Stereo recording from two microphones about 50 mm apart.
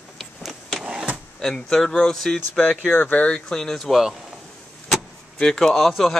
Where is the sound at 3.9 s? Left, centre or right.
Centre.